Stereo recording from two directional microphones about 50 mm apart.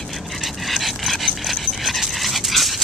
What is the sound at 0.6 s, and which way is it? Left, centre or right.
Dog, centre.